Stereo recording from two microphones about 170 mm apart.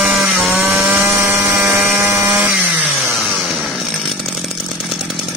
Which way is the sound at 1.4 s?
5° right (ahead or behind).